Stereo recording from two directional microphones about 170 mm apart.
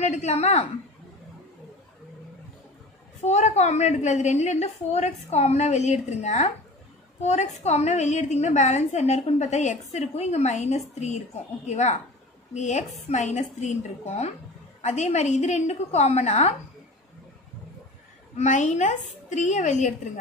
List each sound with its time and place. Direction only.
0.0 s a woman's voice: 40° left (ahead or behind)
3.3 s a woman's voice: 40° left (ahead or behind)
18.3 s a woman's voice: 45° left (ahead or behind)